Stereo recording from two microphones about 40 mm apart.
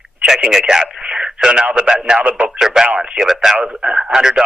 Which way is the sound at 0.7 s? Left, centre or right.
Right.